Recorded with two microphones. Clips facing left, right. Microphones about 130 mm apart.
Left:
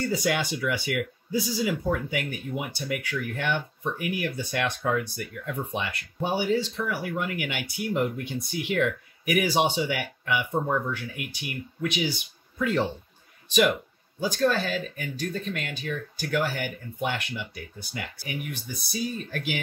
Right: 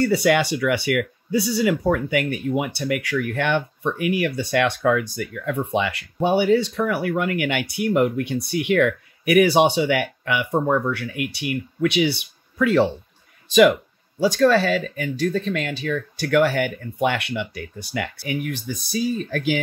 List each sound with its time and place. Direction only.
0.0 s speech: 75° right (ahead or behind)
14.2 s speech: 90° right